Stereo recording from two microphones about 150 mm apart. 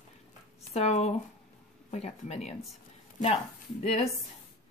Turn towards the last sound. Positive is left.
turn(degrees=45)  # may be behind; listen again after turning